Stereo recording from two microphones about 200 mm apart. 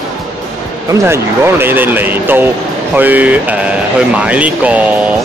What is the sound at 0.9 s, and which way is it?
Speech, 15° right (ahead or behind).